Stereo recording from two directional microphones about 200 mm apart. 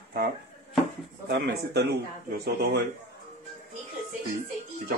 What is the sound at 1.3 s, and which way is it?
Speech, 55° right (ahead or behind).